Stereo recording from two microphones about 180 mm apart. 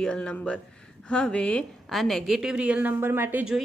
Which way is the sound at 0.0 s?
5° left (ahead or behind).